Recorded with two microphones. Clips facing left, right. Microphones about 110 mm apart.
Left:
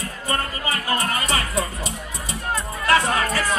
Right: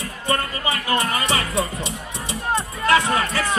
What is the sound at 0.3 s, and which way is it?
Music, 40° left (ahead or behind).